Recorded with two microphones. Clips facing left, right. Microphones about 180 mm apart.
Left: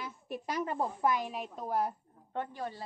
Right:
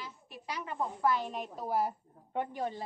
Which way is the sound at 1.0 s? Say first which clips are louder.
Right 1 dB; 15° left (ahead or behind).